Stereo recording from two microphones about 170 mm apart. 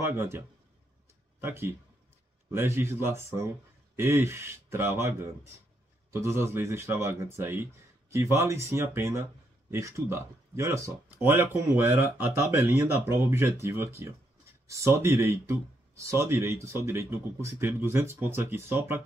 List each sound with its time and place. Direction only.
0.0 s speech: 15° right (ahead or behind)
1.4 s speech: 15° right (ahead or behind)